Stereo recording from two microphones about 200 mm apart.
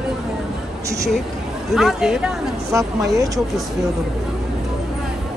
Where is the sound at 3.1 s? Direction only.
15° right (ahead or behind).